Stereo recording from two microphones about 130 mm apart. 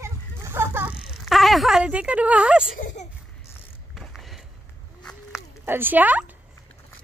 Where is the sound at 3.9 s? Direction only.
Centre (ahead or behind).